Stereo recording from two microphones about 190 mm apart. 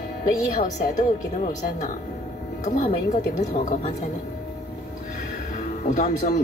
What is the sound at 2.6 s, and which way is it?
A woman's voice, 35° left (ahead or behind).